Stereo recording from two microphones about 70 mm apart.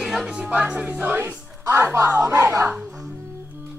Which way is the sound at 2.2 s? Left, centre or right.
Right.